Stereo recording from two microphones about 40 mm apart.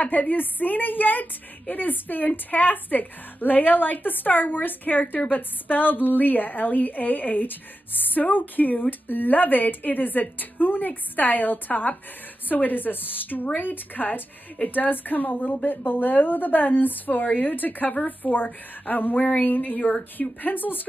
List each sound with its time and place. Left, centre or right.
0.0 s speech: left